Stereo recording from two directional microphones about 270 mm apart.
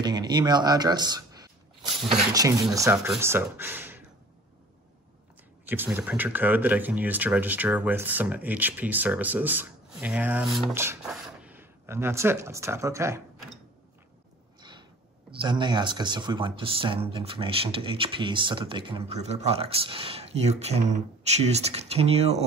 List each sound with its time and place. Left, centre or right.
0.0 s speech: centre
5.7 s speech: centre
14.6 s a sound: centre
15.3 s speech: centre